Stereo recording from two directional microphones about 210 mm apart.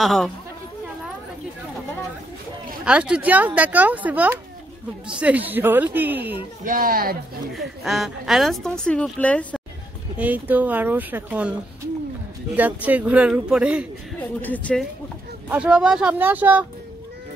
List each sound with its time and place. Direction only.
0.0 s speech: centre (ahead or behind)
2.8 s speech: 5° right (ahead or behind)
6.6 s speech: 40° right (ahead or behind)
7.5 s speech: centre (ahead or behind)
10.1 s speech: 10° right (ahead or behind)
12.5 s speech: 5° right (ahead or behind)
14.4 s speech: 5° left (ahead or behind)
15.4 s speech: 5° right (ahead or behind)